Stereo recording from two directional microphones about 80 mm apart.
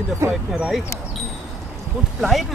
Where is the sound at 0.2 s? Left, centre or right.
Right.